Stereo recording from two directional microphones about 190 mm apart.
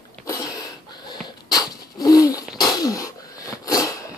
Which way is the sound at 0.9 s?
20° left (ahead or behind).